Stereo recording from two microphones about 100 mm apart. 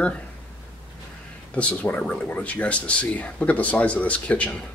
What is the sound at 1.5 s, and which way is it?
Speech, 15° left (ahead or behind).